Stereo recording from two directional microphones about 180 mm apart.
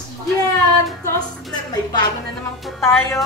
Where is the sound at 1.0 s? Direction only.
15° left (ahead or behind).